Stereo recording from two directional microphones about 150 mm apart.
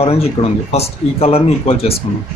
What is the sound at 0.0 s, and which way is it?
Speech, 40° left (ahead or behind).